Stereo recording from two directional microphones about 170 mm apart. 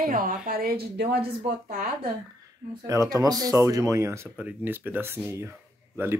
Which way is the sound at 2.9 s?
20° right (ahead or behind).